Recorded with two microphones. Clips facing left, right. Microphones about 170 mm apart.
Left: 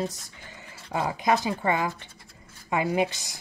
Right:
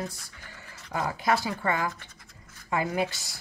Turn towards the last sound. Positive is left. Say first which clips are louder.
# left 4 dB
turn(degrees=20)  # may be behind; listen again after turning